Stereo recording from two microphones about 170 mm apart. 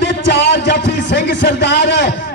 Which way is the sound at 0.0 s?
90° left.